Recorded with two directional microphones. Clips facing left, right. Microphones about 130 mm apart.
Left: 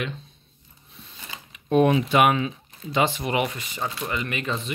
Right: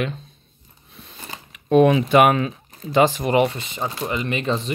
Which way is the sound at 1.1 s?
45° right (ahead or behind).